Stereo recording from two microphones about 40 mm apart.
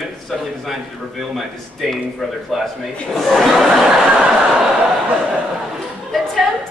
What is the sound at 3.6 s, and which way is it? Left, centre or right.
Speech, centre.